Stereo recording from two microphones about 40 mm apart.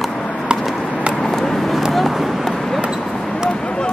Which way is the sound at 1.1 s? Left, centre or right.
Centre.